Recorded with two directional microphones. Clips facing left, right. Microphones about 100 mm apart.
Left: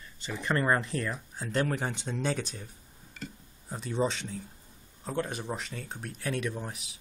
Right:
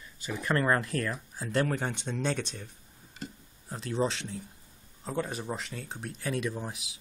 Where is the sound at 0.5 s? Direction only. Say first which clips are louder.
Even; 5° left (ahead or behind).